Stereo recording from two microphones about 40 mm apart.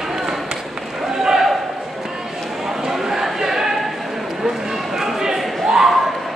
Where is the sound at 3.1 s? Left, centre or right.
Centre.